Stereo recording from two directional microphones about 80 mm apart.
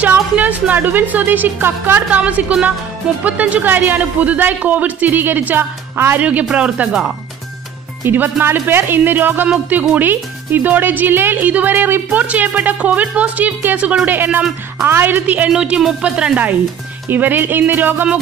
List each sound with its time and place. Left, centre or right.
0.0 s speech: centre
6.2 s speech: centre